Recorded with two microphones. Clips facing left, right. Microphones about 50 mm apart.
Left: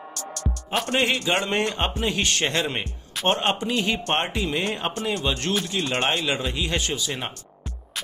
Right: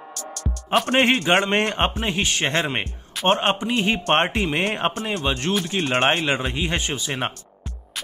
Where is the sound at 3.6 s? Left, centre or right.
Right.